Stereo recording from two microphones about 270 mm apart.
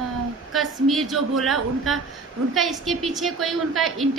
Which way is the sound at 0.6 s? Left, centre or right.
Centre.